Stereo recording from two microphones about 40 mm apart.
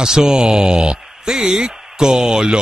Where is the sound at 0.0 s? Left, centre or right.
Centre.